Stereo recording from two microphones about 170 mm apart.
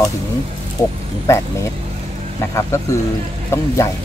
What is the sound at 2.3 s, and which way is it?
Speech, 15° left (ahead or behind).